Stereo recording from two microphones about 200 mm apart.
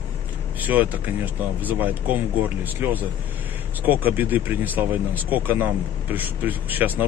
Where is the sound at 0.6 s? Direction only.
10° right (ahead or behind).